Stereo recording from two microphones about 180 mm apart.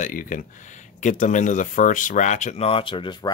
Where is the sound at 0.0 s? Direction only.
50° left (ahead or behind).